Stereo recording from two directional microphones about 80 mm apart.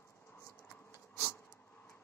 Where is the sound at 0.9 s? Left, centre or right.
Left.